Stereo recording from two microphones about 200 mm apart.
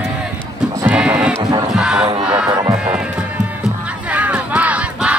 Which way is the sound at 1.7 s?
5° right (ahead or behind).